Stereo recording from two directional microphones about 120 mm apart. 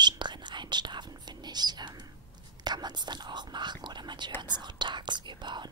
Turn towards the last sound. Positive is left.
turn(degrees=-40)  # may be behind; listen again after turning